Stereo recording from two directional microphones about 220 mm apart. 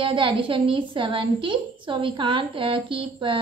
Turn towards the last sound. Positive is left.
turn(degrees=-25)  # may be behind; listen again after turning